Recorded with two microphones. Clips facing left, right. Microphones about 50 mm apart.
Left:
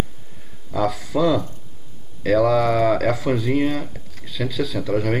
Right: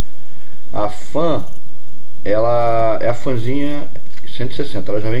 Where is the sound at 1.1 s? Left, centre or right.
Right.